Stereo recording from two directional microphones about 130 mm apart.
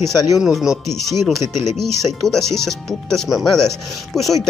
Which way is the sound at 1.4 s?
20° right (ahead or behind).